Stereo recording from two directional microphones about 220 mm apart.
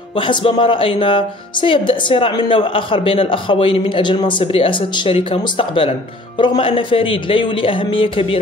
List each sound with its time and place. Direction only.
0.3 s speech: 20° left (ahead or behind)